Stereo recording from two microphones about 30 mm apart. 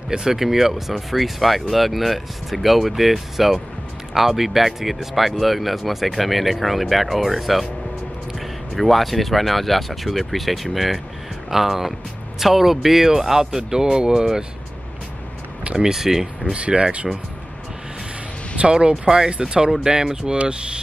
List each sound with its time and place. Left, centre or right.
0.2 s speech: centre
15.8 s speech: centre
16.5 s speech: right
18.6 s speech: right
20.3 s speech: right